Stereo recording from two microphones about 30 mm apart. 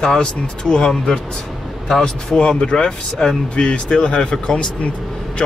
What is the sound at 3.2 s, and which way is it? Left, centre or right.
Speech, centre.